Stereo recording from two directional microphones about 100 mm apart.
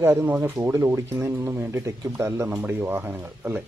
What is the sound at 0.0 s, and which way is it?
Speech, 20° right (ahead or behind).